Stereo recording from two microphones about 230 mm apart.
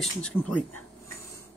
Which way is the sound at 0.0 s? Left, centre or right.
Centre.